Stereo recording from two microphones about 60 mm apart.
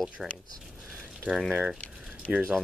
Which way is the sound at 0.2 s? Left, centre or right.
Centre.